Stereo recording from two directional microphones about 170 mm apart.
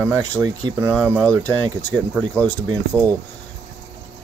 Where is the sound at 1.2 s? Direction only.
5° left (ahead or behind).